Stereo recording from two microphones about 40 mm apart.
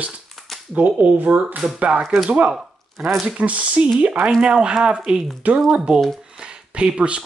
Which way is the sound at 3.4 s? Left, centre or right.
Right.